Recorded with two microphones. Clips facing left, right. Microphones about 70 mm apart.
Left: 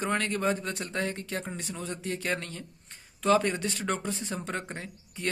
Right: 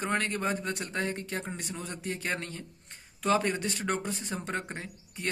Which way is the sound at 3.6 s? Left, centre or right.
Right.